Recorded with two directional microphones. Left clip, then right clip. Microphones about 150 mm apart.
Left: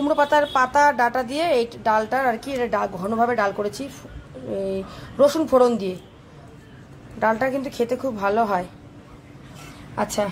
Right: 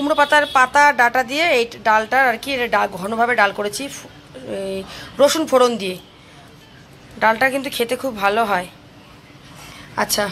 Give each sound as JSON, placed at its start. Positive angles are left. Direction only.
{"t": 0.1, "sound": "a woman's voice", "side_deg": 5}
{"t": 3.0, "sound": "speech", "side_deg": -20}
{"t": 3.3, "sound": "a woman's voice", "side_deg": 0}
{"t": 7.2, "sound": "a woman's voice", "side_deg": 0}
{"t": 9.9, "sound": "a woman's voice", "side_deg": 5}